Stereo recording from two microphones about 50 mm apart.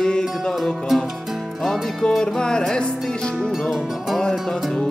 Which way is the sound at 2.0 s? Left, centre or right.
Centre.